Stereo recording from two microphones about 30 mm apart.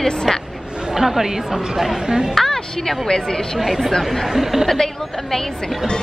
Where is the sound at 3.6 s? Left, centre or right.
Centre.